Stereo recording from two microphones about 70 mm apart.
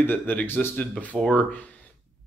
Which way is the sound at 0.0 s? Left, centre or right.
Left.